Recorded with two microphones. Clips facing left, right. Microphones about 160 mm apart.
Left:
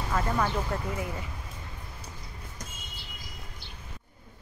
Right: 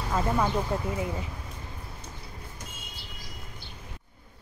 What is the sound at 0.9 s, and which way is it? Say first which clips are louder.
Speech: right 3 dB; 25° right (ahead or behind).